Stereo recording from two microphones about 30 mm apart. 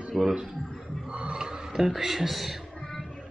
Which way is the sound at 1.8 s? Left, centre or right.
Centre.